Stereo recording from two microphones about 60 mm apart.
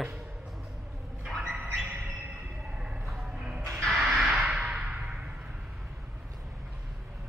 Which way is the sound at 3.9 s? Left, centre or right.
Centre.